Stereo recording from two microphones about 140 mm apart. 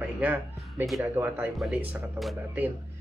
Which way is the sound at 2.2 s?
20° right (ahead or behind).